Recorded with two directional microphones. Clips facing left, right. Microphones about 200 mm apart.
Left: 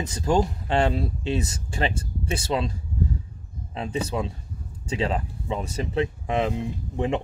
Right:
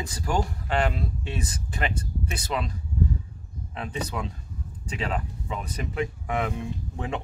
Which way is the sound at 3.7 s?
25° left (ahead or behind).